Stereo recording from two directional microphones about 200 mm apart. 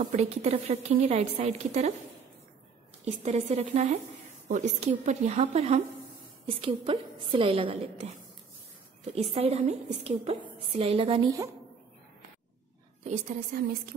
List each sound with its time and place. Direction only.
0.0 s a woman's voice: 35° right (ahead or behind)
3.1 s a woman's voice: 35° right (ahead or behind)
9.1 s a woman's voice: 30° right (ahead or behind)
13.0 s a woman's voice: 40° right (ahead or behind)